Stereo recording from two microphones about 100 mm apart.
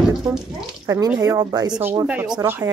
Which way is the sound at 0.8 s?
35° right (ahead or behind).